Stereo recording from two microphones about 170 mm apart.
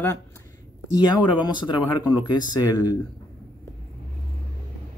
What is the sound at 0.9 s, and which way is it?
Speech, 25° left (ahead or behind).